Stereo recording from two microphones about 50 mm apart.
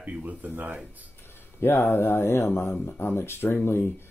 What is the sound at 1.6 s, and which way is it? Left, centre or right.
Speech, left.